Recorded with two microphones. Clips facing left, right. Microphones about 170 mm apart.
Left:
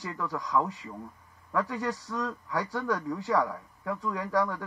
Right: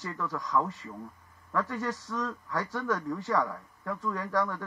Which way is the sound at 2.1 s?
25° left (ahead or behind).